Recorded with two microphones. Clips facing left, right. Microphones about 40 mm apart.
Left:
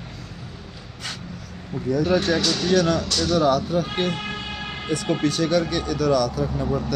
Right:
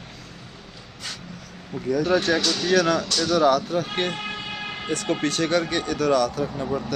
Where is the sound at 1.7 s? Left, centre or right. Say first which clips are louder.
Left 2 dB; centre.